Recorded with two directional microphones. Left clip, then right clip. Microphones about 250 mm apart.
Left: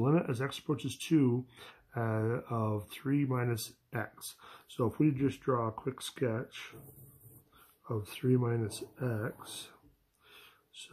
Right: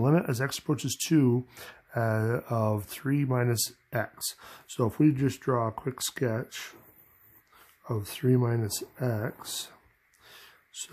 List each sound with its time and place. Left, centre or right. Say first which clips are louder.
0.0 s speech: right 4 dB; right
7.8 s speech: right 5 dB; right
10.2 s gasp: right 5 dB; right